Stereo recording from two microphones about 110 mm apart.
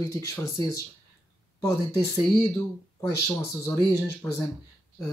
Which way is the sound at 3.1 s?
25° left (ahead or behind).